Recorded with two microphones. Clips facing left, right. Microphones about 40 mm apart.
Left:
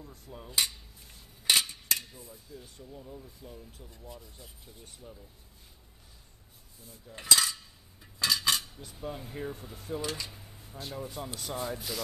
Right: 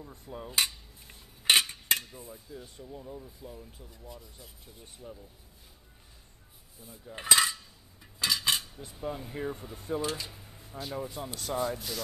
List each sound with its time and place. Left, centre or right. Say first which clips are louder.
0.3 s speech: right 5 dB; centre
1.0 s a sound: right 3 dB; right
2.3 s speech: right 3 dB; centre
4.8 s speech: right 4 dB; centre
6.8 s cutlery: right 4 dB; centre
8.2 s cutlery: even; centre
8.9 s speech: right 2 dB; centre